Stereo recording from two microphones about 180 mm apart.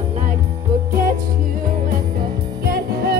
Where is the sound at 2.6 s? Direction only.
60° right (ahead or behind).